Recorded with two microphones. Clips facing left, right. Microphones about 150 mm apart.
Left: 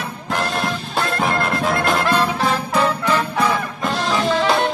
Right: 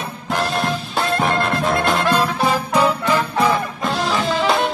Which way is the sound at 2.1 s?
10° right (ahead or behind).